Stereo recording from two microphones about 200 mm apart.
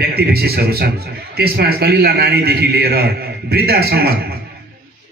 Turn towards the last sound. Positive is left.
turn(degrees=-50)  # may be behind; listen again after turning